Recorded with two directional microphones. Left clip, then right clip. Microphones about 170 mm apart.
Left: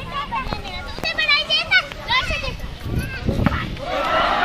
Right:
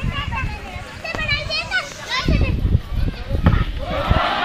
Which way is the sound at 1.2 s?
60° right (ahead or behind).